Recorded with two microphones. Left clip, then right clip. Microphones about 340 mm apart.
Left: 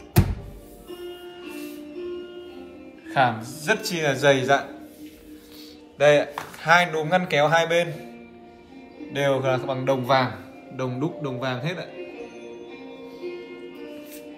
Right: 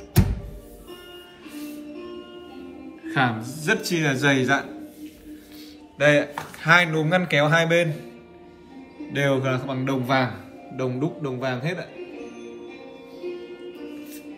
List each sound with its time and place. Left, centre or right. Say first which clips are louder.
3.1 s speech: left 2 dB; centre
5.9 s speech: left 1 dB; centre
9.1 s speech: left 1 dB; centre